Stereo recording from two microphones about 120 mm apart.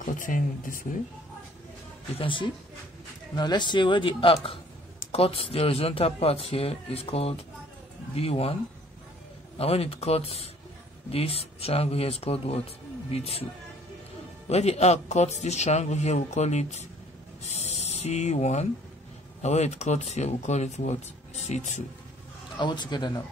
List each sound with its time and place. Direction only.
0.0 s speech: 90° left
2.1 s speech: 45° left (ahead or behind)
9.6 s speech: 55° left (ahead or behind)
14.5 s speech: 65° left (ahead or behind)
22.6 s speech: 40° left (ahead or behind)